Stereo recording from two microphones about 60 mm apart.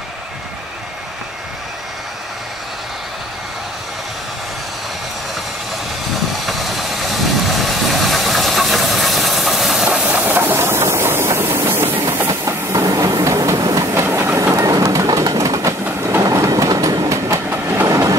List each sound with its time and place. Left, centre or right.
6.4 s vehicle: centre
9.8 s train: centre
10.2 s train: right
12.3 s train: right
13.9 s train: right
14.5 s train: right
15.0 s train: right